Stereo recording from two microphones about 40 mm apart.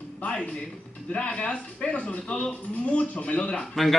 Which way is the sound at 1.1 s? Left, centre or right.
Left.